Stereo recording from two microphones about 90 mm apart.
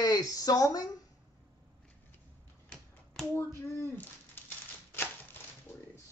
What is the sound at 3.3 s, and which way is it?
Speech, 25° left (ahead or behind).